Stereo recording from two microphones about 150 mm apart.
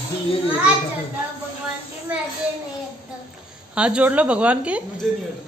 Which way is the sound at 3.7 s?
5° right (ahead or behind).